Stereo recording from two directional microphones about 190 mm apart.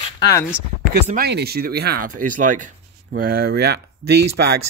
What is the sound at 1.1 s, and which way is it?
Speech, 55° right (ahead or behind).